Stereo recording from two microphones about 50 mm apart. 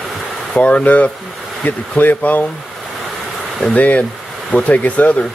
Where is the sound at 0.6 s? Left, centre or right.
Left.